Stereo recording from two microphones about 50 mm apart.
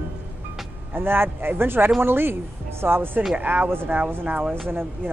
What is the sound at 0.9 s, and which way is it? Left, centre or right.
Speech, right.